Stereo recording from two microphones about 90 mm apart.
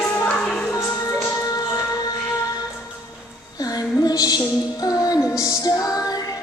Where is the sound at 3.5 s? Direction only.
45° left (ahead or behind).